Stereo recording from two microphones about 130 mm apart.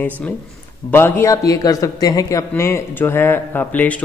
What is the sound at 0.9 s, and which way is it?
A man's voice, 15° left (ahead or behind).